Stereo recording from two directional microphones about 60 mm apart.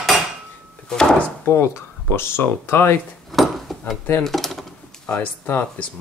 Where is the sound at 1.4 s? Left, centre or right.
Left.